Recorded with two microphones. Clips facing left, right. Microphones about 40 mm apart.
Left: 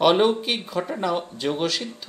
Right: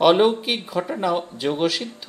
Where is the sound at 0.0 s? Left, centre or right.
Centre.